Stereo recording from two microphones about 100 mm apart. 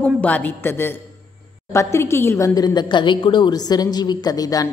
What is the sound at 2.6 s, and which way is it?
A woman's voice, 45° left (ahead or behind).